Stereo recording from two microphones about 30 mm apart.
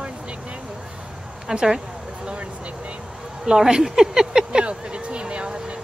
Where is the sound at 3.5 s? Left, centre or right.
Right.